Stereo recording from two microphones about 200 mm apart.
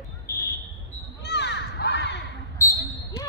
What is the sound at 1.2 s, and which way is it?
Crow, 60° left (ahead or behind).